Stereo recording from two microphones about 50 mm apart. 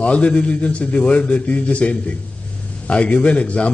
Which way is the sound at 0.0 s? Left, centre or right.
Left.